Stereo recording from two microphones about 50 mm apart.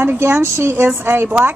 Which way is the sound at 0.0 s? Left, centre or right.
Right.